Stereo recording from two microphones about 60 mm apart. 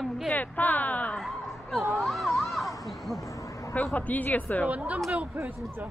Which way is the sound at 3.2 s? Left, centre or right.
Left.